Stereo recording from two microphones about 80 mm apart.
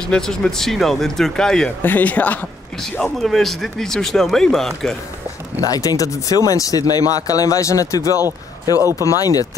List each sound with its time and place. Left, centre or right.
0.1 s speech: centre
1.8 s a man's voice: left
2.8 s speech: centre
5.6 s speech: left